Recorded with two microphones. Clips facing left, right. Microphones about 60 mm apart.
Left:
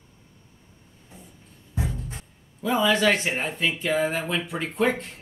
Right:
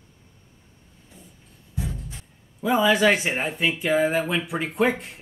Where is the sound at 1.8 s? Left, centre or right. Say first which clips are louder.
Left 2 dB; left.